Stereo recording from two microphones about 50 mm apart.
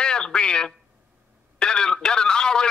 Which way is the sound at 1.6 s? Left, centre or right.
Centre.